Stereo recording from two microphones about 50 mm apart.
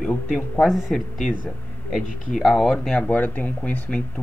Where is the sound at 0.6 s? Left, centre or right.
Centre.